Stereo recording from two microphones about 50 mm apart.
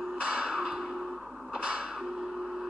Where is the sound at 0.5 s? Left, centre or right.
Centre.